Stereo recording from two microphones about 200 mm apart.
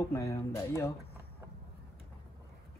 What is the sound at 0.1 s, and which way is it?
Speech, 15° left (ahead or behind).